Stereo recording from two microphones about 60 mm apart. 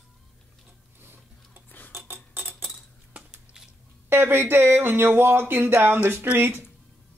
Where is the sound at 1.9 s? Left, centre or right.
Right.